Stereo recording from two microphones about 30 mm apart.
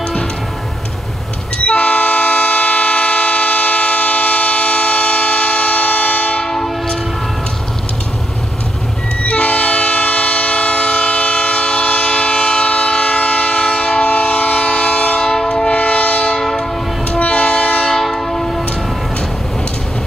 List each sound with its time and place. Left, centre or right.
1.7 s vehicle: left
9.2 s train: left
15.6 s train: left
16.3 s train: centre
17.3 s train: left
18.0 s train: centre